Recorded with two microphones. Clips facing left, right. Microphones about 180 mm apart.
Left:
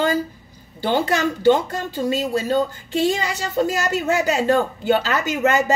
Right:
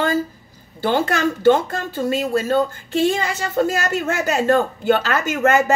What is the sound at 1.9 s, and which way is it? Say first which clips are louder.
A woman's voice: right 1 dB; 50° right (ahead or behind).